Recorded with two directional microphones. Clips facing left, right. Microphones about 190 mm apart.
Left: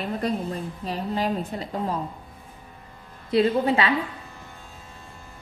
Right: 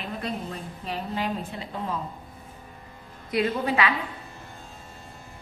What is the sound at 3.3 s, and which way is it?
Speech, 30° left (ahead or behind).